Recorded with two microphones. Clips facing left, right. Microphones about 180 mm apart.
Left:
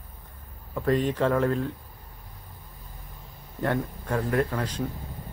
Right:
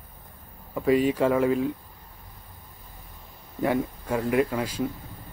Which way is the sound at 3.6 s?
10° right (ahead or behind).